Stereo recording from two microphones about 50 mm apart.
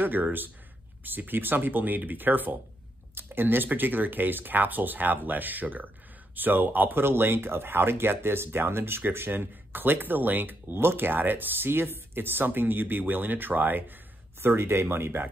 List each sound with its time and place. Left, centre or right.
0.0 s speech: right
14.4 s speech: right